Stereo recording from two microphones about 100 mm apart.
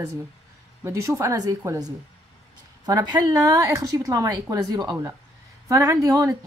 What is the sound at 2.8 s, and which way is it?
Speech, 40° right (ahead or behind).